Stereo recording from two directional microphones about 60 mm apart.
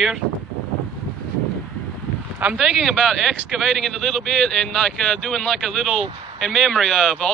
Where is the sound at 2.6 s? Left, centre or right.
Centre.